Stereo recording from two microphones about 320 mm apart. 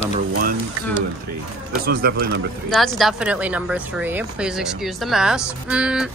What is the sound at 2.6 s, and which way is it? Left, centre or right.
A woman's voice, centre.